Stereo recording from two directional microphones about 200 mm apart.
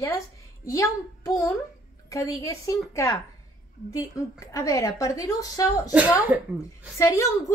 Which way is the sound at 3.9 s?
15° left (ahead or behind).